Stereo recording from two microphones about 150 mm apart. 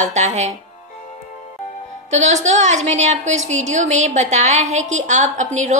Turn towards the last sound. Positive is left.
turn(degrees=-55)  # may be behind; listen again after turning